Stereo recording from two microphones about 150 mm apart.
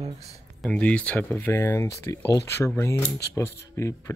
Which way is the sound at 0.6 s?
5° left (ahead or behind).